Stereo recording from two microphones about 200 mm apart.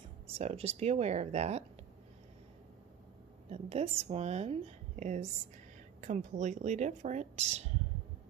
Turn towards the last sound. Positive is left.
turn(degrees=-35)  # may be behind; listen again after turning